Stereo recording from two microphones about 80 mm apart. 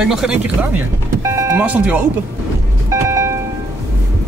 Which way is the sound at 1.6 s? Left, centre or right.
Centre.